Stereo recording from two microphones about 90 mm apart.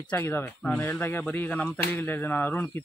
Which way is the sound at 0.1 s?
20° left (ahead or behind).